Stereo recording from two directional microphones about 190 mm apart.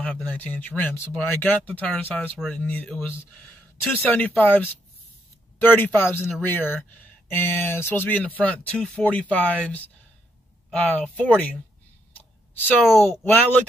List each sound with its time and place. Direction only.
0.0 s speech: 5° left (ahead or behind)
12.2 s a sound: 10° left (ahead or behind)
13.3 s speech: 10° left (ahead or behind)